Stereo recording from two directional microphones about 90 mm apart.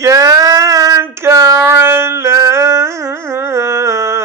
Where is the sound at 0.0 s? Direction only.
35° right (ahead or behind).